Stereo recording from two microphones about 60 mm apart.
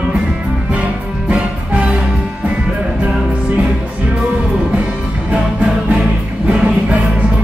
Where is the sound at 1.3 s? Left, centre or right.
Right.